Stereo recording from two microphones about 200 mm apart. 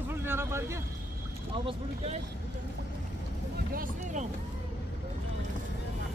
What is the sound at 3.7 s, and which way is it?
Speech, 40° right (ahead or behind).